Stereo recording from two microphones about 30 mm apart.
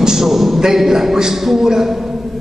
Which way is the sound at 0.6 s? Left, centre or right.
Centre.